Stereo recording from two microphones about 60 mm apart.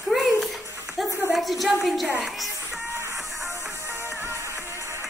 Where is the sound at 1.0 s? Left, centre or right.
Centre.